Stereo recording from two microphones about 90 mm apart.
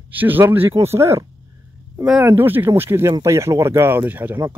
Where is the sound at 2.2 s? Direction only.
20° right (ahead or behind).